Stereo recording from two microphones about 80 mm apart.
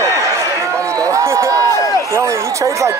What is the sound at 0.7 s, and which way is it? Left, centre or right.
Run, right.